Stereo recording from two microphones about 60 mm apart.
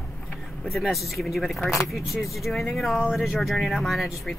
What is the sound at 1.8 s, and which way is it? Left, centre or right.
Speech, centre.